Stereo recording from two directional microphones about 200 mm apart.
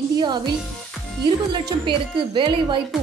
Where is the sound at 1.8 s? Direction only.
25° right (ahead or behind).